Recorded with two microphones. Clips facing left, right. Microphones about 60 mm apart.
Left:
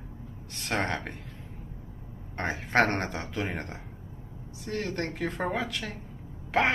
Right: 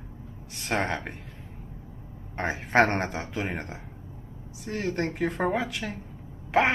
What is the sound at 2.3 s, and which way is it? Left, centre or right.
Speech, centre.